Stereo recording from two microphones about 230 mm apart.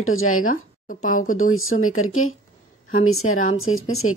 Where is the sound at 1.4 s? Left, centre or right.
Left.